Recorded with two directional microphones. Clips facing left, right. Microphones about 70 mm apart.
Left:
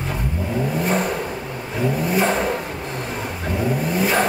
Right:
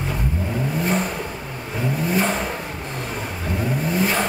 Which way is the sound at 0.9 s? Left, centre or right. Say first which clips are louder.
Left 2 dB; left.